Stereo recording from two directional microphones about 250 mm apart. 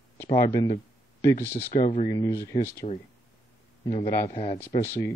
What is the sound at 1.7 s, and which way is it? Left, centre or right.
Speech, left.